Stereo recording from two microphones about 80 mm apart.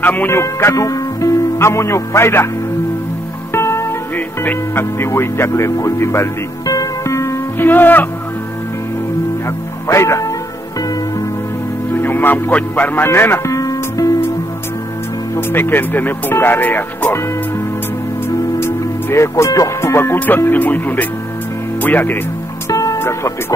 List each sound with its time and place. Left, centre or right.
0.0 s speech: left
0.4 s speech: left
3.5 s music: left
4.4 s speech: left
6.6 s music: left
7.5 s speech: left
9.8 s speech: left
11.9 s a man's voice: left
13.6 s music: left
15.3 s speech: left
18.6 s speech: left
22.7 s music: left
22.9 s speech: left